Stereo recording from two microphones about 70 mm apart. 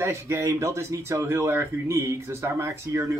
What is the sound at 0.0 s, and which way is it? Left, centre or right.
Speech, right.